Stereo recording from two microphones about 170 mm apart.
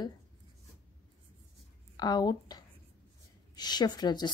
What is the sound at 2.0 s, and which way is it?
A woman's voice, 25° left (ahead or behind).